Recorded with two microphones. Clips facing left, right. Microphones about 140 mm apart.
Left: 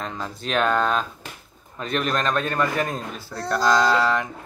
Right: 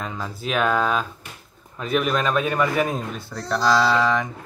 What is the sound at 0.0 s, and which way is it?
Speech, centre (ahead or behind).